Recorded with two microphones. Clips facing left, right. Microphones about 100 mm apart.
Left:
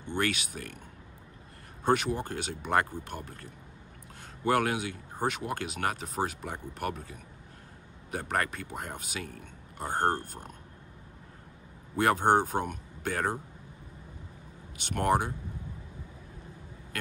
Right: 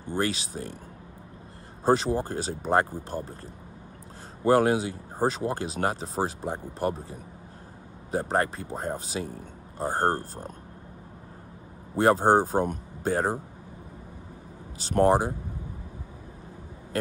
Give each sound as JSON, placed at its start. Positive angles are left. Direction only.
{"t": 0.0, "sound": "speech", "side_deg": -35}
{"t": 1.9, "sound": "speech", "side_deg": -30}
{"t": 11.9, "sound": "speech", "side_deg": -30}
{"t": 14.8, "sound": "speech", "side_deg": -35}